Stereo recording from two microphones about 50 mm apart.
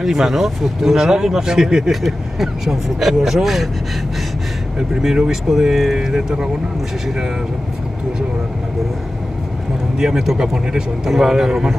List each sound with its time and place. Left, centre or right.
0.0 s speech: centre
5.0 s a man's voice: centre
9.9 s a man's voice: centre